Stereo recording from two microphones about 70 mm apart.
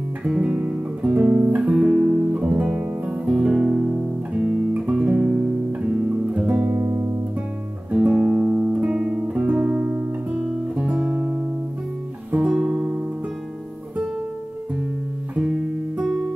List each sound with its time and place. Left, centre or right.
0.2 s guitar: centre
1.8 s music: centre
4.3 s music: right
5.7 s guitar: right
6.7 s guitar: right
7.9 s guitar: centre
12.3 s music: right
12.5 s guitar: centre
15.3 s guitar: centre